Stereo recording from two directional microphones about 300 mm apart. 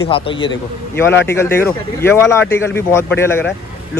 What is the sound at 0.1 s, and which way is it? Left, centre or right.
A man's voice, centre.